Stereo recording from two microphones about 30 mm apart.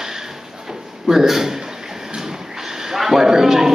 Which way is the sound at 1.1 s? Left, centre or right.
Centre.